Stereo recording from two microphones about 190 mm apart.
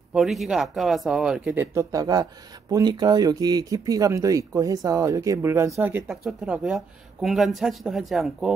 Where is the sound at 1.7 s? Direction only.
20° right (ahead or behind).